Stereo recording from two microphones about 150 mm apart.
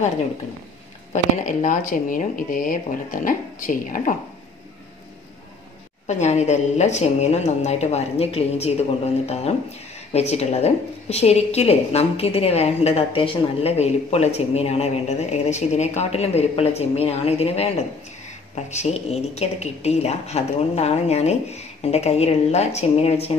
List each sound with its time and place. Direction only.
1.1 s speech: 55° left (ahead or behind)
6.0 s a woman's voice: 50° left (ahead or behind)